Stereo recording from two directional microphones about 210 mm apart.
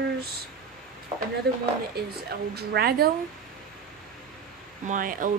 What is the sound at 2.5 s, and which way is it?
Speech, 50° right (ahead or behind).